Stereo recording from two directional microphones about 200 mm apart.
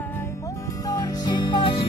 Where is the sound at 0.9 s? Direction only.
20° left (ahead or behind).